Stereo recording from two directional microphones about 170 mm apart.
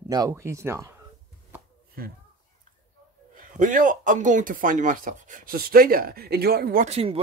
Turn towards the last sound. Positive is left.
turn(degrees=-35)  # may be behind; listen again after turning